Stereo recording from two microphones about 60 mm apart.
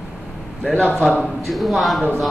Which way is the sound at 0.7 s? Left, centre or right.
Left.